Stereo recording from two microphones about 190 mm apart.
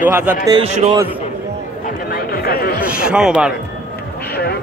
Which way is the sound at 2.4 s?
55° left (ahead or behind).